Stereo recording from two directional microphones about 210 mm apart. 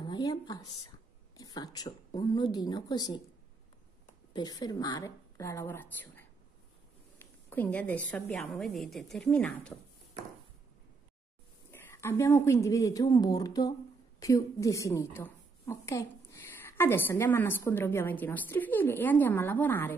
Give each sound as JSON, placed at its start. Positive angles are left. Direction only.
{"t": 0.0, "sound": "a sound", "side_deg": 20}
{"t": 1.3, "sound": "a woman's voice", "side_deg": 15}
{"t": 4.3, "sound": "a woman's voice", "side_deg": 20}
{"t": 11.7, "sound": "a woman's voice", "side_deg": 10}